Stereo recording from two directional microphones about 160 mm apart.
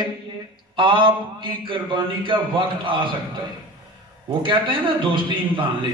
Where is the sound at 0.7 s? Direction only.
30° right (ahead or behind).